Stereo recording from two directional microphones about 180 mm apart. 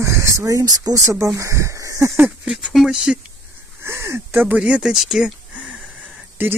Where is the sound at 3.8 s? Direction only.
15° right (ahead or behind).